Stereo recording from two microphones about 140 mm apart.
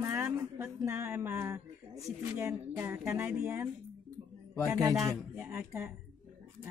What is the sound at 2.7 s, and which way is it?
Speech, 10° right (ahead or behind).